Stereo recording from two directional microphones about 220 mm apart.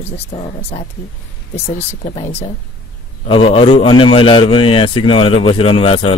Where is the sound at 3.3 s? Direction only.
25° left (ahead or behind).